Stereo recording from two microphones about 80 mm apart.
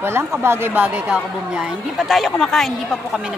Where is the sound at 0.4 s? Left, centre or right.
Right.